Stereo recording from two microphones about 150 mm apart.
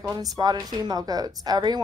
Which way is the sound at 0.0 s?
25° right (ahead or behind).